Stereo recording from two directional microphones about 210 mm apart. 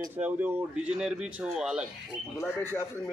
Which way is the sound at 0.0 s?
10° right (ahead or behind).